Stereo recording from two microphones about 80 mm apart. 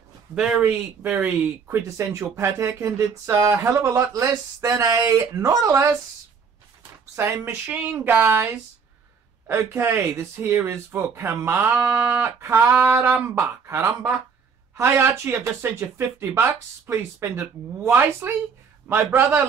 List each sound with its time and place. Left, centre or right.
0.3 s speech: centre
1.9 s speech: right
7.2 s speech: right
9.5 s a man's voice: right